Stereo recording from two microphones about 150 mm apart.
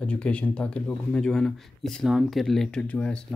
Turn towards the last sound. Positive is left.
turn(degrees=10)  # may be behind; listen again after turning